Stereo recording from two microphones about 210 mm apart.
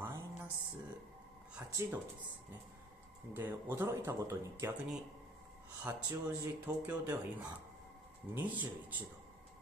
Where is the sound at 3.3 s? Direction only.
10° right (ahead or behind).